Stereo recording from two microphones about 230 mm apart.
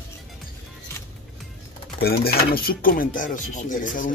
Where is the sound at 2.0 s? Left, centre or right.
Left.